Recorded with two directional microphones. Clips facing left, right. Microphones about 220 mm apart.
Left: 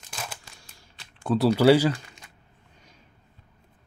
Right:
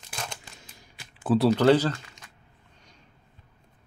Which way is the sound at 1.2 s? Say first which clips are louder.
Right 1 dB; 5° right (ahead or behind).